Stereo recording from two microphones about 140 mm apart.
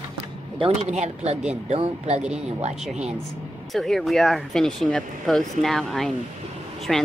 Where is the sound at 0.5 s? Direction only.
45° right (ahead or behind).